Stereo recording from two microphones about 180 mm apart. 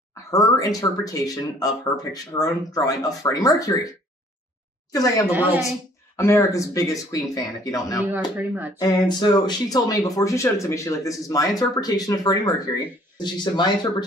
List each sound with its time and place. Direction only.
0.1 s speech: 20° left (ahead or behind)
4.9 s speech: 20° left (ahead or behind)
8.1 s speech: 10° right (ahead or behind)
8.7 s speech: 20° left (ahead or behind)